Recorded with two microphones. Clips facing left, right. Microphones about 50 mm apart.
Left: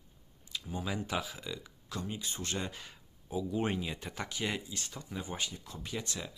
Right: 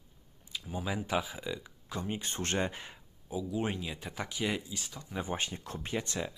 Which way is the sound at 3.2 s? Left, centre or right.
Centre.